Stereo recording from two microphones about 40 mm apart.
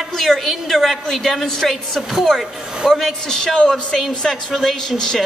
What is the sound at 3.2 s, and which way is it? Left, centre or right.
Speech, centre.